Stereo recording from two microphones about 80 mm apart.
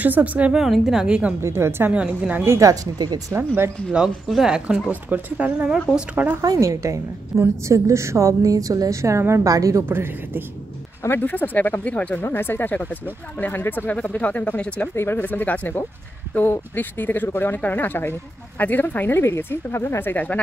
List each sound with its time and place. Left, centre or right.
0.0 s a woman's voice: centre
0.5 s speech: centre
1.4 s a woman's voice: right
1.9 s speech: centre
2.4 s a woman's voice: right
2.7 s speech: right
3.3 s a woman's voice: right
3.9 s a woman's voice: centre; by 6.4 s right
6.4 s a woman's voice: right
9.8 s a woman's voice: right
11.0 s speech: left